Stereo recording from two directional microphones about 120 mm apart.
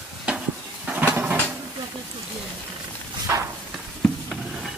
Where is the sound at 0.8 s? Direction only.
15° right (ahead or behind).